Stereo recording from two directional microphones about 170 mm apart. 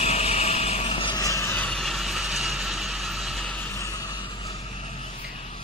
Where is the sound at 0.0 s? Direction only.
40° left (ahead or behind); by 1.6 s 20° left (ahead or behind).